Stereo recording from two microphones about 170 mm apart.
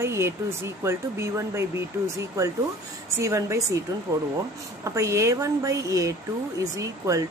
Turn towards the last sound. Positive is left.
turn(degrees=-20)  # may be behind; listen again after turning